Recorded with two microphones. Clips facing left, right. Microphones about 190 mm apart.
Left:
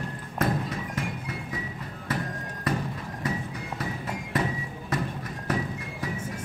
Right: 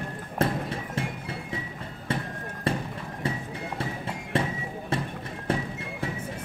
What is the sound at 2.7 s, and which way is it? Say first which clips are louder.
Clip-clop: even; 30° right (ahead or behind).